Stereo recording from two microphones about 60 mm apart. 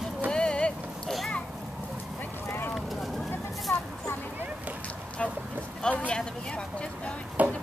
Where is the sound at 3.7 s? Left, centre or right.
Left.